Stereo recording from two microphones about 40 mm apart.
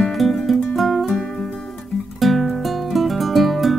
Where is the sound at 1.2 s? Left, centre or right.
Left.